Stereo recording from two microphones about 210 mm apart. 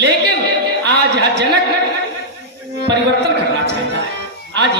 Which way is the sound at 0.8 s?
55° right (ahead or behind).